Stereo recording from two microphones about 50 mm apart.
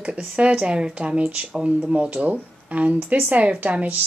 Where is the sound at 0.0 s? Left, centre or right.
Right.